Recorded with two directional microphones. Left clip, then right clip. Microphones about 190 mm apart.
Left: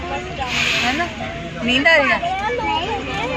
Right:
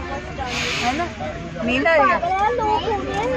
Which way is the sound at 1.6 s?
5° right (ahead or behind).